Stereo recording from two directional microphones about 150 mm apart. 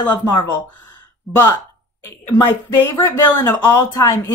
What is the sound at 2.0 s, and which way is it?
Speech, 20° left (ahead or behind).